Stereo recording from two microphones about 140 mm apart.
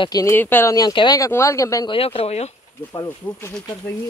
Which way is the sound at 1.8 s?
45° left (ahead or behind).